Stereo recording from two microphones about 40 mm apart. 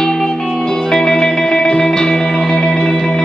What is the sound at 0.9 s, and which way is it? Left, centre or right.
Music, centre.